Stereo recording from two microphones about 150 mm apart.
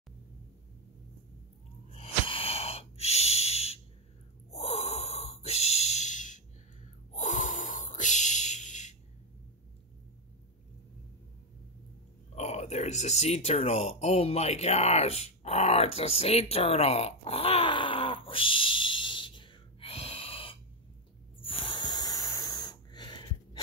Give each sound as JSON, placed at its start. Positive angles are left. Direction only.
{"t": 2.0, "sound": "wheeze", "side_deg": 40}
{"t": 4.5, "sound": "gasp", "side_deg": 45}
{"t": 12.4, "sound": "a sound", "side_deg": 50}